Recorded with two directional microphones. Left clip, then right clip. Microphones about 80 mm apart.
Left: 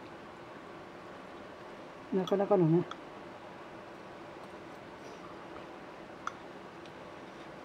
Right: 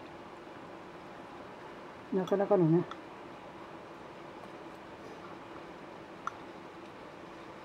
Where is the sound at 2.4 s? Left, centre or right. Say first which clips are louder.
Right 1 dB; left.